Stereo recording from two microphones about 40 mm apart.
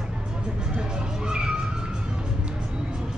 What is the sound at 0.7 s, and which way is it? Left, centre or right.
Cat, centre.